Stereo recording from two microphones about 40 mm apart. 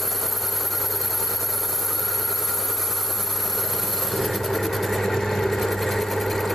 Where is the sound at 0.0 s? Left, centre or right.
Centre.